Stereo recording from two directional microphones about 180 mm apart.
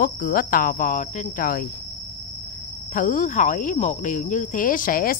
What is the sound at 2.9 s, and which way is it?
Speech, 45° left (ahead or behind).